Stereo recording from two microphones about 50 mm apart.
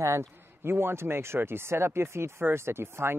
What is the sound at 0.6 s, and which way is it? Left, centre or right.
Speech, right.